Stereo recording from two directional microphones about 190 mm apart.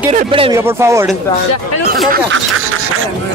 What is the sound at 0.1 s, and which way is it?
Speech, 30° right (ahead or behind).